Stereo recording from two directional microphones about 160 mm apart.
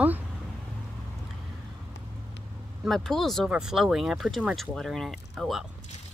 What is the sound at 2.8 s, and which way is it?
Speech, centre (ahead or behind).